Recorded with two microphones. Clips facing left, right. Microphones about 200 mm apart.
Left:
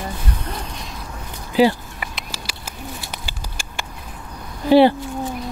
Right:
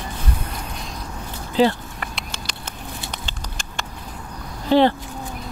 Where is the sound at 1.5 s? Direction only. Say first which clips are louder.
Left 2 dB; 10° left (ahead or behind).